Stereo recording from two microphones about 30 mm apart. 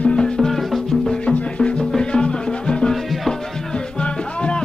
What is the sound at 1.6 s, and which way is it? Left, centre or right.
Music, left.